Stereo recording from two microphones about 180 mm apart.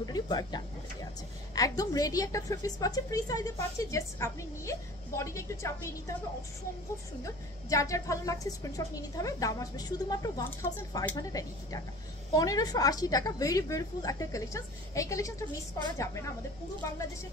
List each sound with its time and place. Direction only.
0.0 s a woman's voice: 20° left (ahead or behind)
7.2 s a woman's voice: 15° left (ahead or behind)